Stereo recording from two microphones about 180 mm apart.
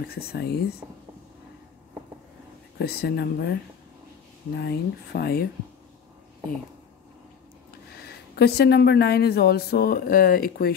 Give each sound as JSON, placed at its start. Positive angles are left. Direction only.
{"t": 0.0, "sound": "speech", "side_deg": 60}
{"t": 2.8, "sound": "speech", "side_deg": 60}
{"t": 4.6, "sound": "speech", "side_deg": 65}
{"t": 8.0, "sound": "speech", "side_deg": 65}